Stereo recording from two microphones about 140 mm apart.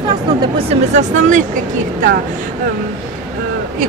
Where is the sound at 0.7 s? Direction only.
55° right (ahead or behind).